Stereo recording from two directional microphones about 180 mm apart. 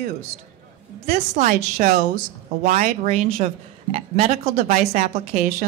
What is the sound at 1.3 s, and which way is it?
A woman's voice, 45° right (ahead or behind).